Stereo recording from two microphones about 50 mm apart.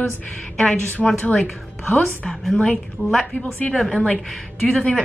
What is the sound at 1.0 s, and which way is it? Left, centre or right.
A woman's voice, centre.